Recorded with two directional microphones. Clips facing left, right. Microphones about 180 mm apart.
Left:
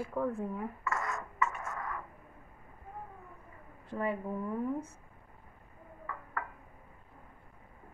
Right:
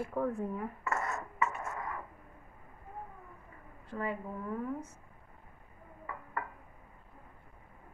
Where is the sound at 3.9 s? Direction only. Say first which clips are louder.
Left 3 dB; 20° left (ahead or behind).